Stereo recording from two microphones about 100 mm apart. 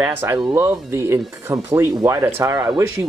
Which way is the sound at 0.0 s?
20° right (ahead or behind).